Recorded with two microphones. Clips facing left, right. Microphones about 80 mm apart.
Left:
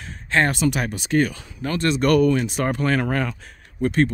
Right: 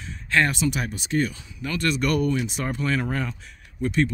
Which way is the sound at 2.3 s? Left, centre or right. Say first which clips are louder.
Left 5 dB; left.